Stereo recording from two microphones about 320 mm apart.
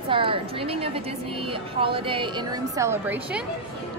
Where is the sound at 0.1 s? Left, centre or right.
Centre.